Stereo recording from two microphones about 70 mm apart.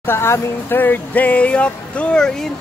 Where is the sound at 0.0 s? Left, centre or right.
Left.